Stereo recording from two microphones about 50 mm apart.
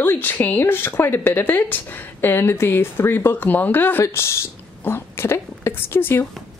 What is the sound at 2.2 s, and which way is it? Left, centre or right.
Speech, left.